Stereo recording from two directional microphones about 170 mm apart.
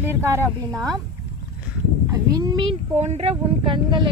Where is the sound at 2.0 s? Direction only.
20° right (ahead or behind).